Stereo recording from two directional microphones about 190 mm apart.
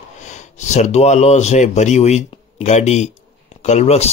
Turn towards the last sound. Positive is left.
turn(degrees=35)  # may be behind; listen again after turning